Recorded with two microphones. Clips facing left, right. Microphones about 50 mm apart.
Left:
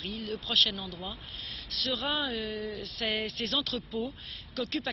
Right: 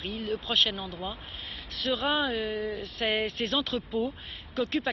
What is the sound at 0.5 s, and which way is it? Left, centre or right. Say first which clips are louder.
Speech: even; centre.